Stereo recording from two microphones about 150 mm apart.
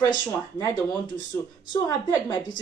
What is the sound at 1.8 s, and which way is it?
Speech, 25° left (ahead or behind).